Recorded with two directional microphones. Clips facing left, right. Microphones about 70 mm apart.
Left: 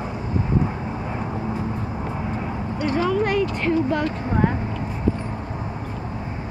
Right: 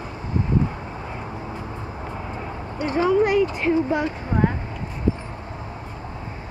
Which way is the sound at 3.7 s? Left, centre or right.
Centre.